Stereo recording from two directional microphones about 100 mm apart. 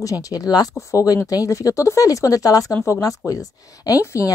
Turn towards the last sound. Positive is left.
turn(degrees=30)  # may be behind; listen again after turning